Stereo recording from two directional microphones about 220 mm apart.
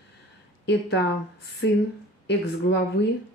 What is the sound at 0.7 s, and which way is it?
Speech, 50° left (ahead or behind).